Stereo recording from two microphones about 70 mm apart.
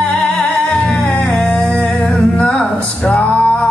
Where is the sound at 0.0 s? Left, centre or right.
Centre.